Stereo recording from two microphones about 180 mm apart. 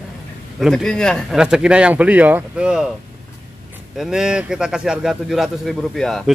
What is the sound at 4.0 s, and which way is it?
Speech, 5° right (ahead or behind).